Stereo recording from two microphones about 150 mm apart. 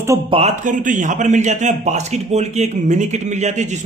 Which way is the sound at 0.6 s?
60° right (ahead or behind).